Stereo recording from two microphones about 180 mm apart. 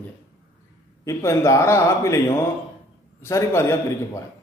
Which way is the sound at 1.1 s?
15° left (ahead or behind).